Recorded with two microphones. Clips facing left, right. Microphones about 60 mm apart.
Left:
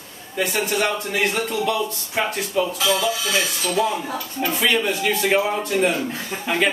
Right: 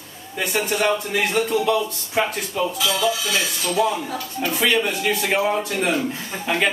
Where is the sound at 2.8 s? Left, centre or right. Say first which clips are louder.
Even; left.